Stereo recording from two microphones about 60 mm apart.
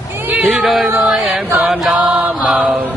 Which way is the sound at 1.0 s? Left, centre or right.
Centre.